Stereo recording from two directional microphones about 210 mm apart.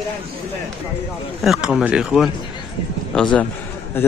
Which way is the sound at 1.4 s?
Centre (ahead or behind).